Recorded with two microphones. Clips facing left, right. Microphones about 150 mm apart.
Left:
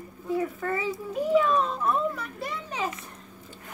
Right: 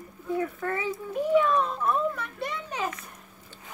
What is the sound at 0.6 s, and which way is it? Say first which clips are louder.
A child's voice: left 1 dB; centre (ahead or behind).